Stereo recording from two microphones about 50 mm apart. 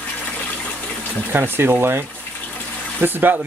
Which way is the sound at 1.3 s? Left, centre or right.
Right.